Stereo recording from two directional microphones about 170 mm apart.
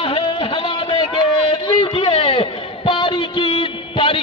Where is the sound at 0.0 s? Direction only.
30° left (ahead or behind).